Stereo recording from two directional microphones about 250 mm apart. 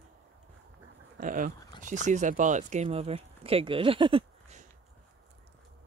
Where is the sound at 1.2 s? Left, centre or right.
Right.